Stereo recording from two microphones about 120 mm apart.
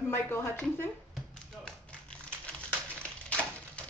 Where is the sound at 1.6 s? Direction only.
10° left (ahead or behind).